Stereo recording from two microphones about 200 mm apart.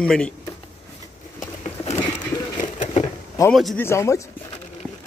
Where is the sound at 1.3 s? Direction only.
30° left (ahead or behind).